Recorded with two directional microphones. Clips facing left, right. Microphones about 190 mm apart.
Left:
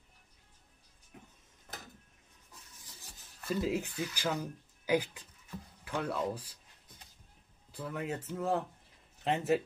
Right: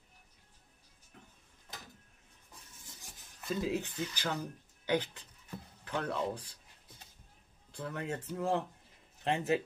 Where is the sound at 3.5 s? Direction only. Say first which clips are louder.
Left 1 dB; 10° left (ahead or behind).